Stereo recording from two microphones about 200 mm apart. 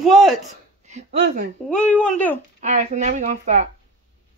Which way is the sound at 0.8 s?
35° right (ahead or behind).